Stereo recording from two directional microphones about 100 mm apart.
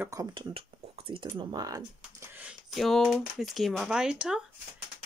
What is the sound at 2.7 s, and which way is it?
Speech, centre (ahead or behind).